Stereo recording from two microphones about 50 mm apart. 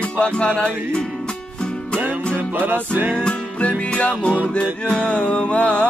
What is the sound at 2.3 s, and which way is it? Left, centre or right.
Music, right.